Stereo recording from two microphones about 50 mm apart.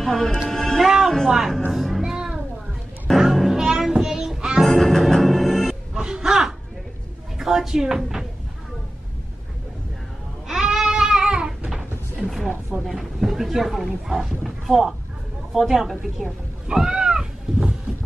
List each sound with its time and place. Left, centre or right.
0.0 s speech: centre
0.8 s speech: centre
1.7 s music: centre
4.6 s music: centre
5.9 s a sound: centre
7.3 s speech: centre
10.5 s goat: centre
12.3 s wild animals: centre
12.8 s speech: centre
16.6 s cat: centre